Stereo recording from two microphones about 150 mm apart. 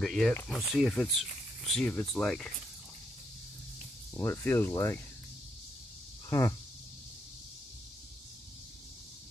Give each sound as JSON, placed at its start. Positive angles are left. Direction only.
{"t": 0.0, "sound": "speech", "side_deg": 0}
{"t": 4.2, "sound": "speech", "side_deg": 15}